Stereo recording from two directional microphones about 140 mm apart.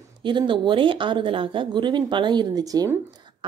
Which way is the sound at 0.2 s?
35° right (ahead or behind).